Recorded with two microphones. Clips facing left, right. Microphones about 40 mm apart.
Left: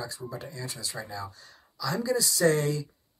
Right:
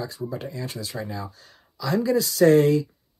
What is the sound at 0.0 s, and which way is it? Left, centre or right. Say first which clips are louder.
Speech: right 6 dB; right.